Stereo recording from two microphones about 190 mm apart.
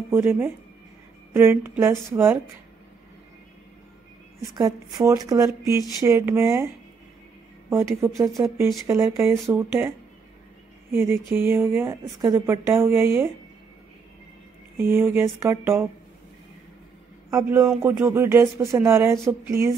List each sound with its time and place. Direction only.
0.1 s speech: 10° right (ahead or behind)
4.4 s speech: 20° right (ahead or behind)
7.7 s speech: 15° right (ahead or behind)
14.8 s speech: 10° right (ahead or behind)
17.3 s speech: 15° right (ahead or behind)